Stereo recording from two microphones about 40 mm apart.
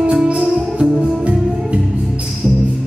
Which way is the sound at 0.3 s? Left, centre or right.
Right.